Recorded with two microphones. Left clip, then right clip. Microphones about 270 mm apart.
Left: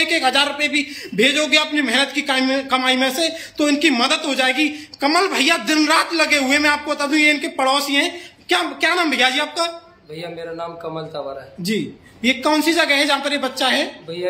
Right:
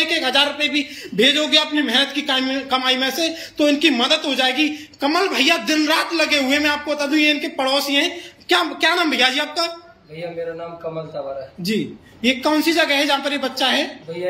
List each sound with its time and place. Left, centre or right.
0.0 s a man's voice: centre
11.6 s a man's voice: centre